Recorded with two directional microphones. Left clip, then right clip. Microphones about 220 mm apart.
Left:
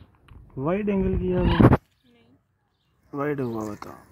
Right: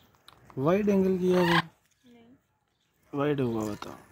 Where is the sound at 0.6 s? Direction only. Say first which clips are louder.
Even; 5° right (ahead or behind).